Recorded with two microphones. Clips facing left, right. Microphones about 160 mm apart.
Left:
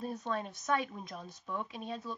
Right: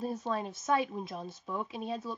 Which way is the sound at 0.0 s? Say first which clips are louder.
Right 3 dB; centre (ahead or behind).